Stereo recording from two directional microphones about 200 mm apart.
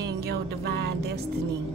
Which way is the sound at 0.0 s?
55° right (ahead or behind).